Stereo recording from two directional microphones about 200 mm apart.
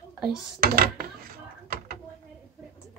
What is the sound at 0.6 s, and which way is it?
Speech, 50° right (ahead or behind).